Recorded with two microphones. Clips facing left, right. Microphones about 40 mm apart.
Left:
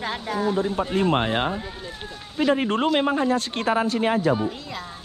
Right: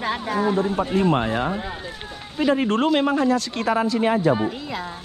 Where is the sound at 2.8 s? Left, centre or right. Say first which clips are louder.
Right 1 dB; centre.